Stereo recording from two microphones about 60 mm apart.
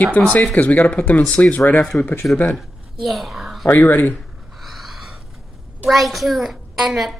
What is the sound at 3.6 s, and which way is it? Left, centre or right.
Speech, left.